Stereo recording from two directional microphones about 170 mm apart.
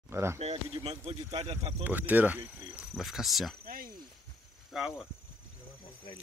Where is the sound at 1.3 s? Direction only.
30° right (ahead or behind).